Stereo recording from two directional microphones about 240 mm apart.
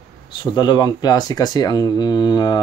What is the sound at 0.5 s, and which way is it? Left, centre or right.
Speech, centre.